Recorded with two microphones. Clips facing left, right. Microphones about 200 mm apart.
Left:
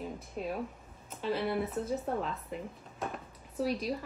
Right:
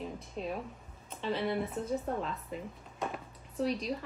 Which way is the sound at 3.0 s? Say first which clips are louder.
Right 1 dB; 5° left (ahead or behind).